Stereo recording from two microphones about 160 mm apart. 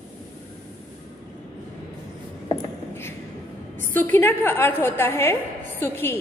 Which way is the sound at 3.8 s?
15° left (ahead or behind).